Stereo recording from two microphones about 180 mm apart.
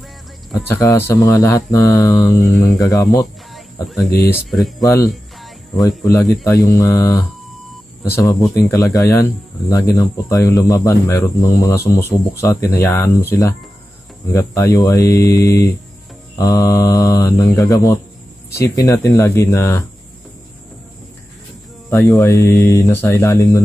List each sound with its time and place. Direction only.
0.7 s speech: 15° left (ahead or behind)
4.5 s speech: centre (ahead or behind)
5.0 s cricket: centre (ahead or behind)
6.2 s speech: centre (ahead or behind)
6.5 s speech: 20° left (ahead or behind)
8.6 s speech: 20° left (ahead or behind)
21.9 s speech: 20° left (ahead or behind)